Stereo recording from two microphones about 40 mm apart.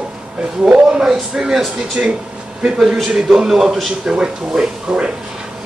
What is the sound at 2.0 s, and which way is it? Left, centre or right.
Speech, right.